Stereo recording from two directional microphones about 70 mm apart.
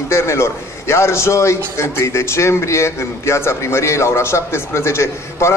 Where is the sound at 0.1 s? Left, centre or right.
Left.